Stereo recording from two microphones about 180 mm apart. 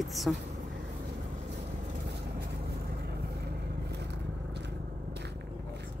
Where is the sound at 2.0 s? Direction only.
65° right (ahead or behind).